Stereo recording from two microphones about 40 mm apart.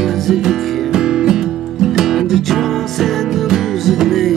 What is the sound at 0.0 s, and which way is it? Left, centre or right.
Music, centre.